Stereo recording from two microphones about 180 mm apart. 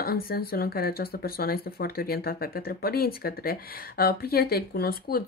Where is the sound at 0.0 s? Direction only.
55° left (ahead or behind).